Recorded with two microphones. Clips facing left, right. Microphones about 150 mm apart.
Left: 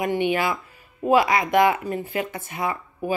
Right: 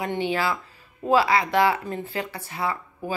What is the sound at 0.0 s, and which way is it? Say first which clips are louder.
Speech: left 3 dB; 15° left (ahead or behind).